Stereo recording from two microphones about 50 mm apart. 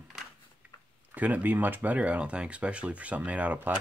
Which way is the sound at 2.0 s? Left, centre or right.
Right.